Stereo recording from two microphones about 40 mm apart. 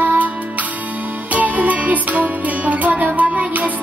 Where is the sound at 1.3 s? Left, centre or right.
Right.